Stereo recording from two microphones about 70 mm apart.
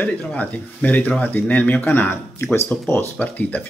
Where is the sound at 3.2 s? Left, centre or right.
Left.